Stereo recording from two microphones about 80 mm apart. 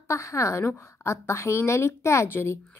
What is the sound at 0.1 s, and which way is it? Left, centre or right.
A woman's voice, left.